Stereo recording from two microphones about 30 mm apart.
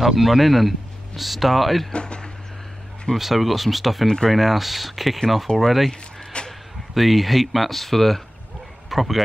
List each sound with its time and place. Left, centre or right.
0.0 s speech: centre
1.9 s speech: left
3.2 s speech: centre
6.4 s a sound: left
6.9 s speech: centre
8.9 s speech: centre